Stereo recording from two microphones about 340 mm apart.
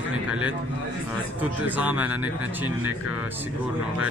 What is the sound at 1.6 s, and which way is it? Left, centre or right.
Speech, centre.